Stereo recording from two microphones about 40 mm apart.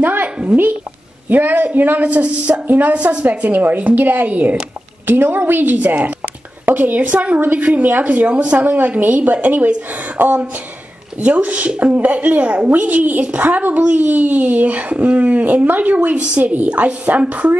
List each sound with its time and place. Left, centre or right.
0.0 s a sound: right
1.3 s a woman's voice: right
3.3 s a woman's voice: right
5.0 s a woman's voice: right
10.2 s speech: right
11.2 s a woman's voice: right